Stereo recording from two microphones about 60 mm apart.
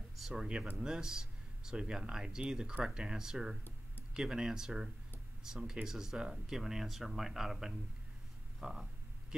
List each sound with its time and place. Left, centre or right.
0.3 s speech: centre